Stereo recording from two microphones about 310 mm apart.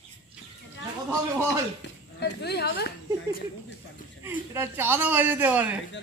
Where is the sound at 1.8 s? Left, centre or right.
Left.